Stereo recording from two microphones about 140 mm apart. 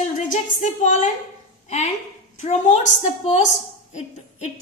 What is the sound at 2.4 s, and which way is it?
A woman's voice, 55° left (ahead or behind).